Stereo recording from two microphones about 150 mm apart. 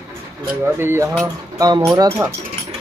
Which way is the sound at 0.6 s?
15° right (ahead or behind).